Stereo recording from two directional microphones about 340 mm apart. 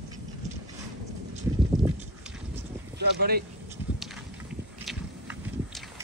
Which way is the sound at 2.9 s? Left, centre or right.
Right.